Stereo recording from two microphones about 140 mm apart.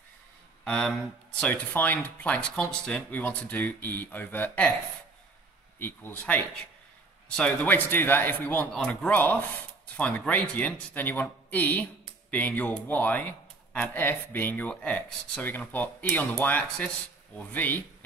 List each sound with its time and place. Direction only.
0.7 s speech: 5° left (ahead or behind)
5.8 s speech: 15° left (ahead or behind)